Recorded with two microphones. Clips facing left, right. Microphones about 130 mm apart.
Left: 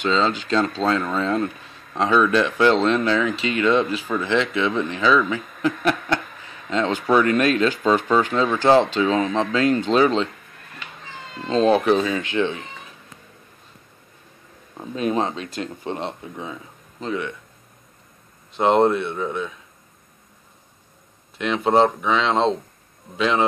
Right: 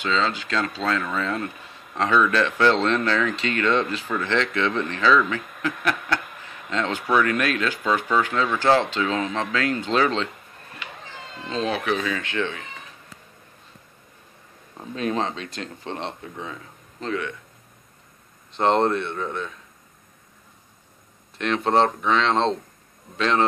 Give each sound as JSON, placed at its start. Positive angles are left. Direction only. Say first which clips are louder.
{"t": 0.0, "sound": "speech", "louder": "left 4 dB", "side_deg": 25}
{"t": 5.8, "sound": "speech", "louder": "left 4 dB", "side_deg": 25}
{"t": 11.4, "sound": "speech", "louder": "left 8 dB", "side_deg": 35}
{"t": 14.8, "sound": "speech", "louder": "left 3 dB", "side_deg": 10}
{"t": 18.5, "sound": "speech", "louder": "left 3 dB", "side_deg": 10}
{"t": 21.4, "sound": "speech", "louder": "left 2 dB", "side_deg": 5}